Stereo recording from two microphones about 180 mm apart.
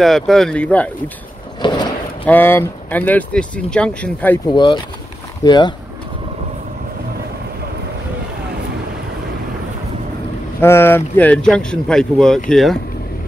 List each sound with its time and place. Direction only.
0.0 s speech: centre (ahead or behind)
1.6 s a sound: 25° left (ahead or behind)
2.2 s speech: 10° left (ahead or behind)
4.5 s speech: 25° left (ahead or behind)
10.6 s speech: 15° left (ahead or behind)